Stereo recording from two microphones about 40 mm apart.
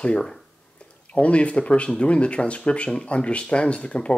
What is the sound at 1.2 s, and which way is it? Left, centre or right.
Speech, left.